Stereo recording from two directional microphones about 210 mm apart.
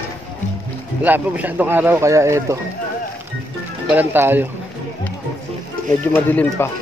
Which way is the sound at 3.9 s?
10° right (ahead or behind).